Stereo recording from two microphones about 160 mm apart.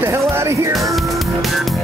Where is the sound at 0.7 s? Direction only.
Centre (ahead or behind).